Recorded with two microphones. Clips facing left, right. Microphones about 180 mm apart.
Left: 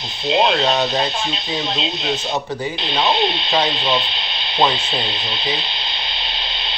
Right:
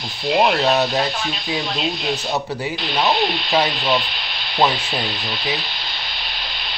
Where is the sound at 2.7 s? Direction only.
20° left (ahead or behind).